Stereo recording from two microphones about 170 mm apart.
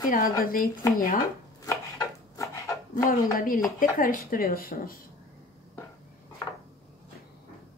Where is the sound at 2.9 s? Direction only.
55° left (ahead or behind).